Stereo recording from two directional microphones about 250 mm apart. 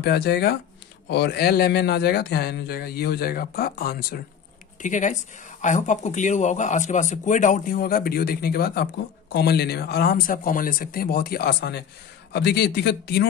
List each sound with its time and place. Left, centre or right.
0.0 s speech: left